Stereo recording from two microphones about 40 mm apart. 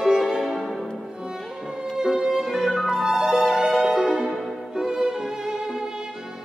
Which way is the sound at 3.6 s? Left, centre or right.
Right.